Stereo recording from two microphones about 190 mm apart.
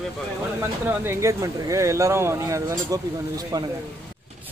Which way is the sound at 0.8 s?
15° right (ahead or behind).